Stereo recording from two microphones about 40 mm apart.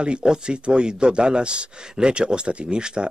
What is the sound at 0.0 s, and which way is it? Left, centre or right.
Speech, right.